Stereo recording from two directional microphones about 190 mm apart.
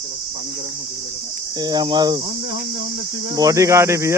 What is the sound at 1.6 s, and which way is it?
Speech, 20° right (ahead or behind).